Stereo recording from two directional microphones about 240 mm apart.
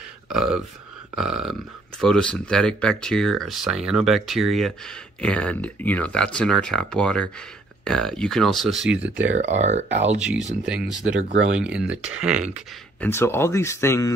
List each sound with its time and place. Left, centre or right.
0.3 s speech: centre
9.3 s speech: right
10.2 s speech: centre
13.0 s speech: centre